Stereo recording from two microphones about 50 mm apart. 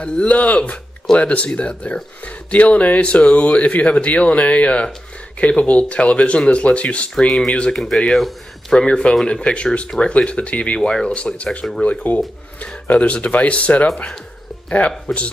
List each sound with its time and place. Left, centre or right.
0.0 s speech: left
7.2 s speech: centre
8.7 s speech: centre
10.8 s speech: centre
11.1 s speech: left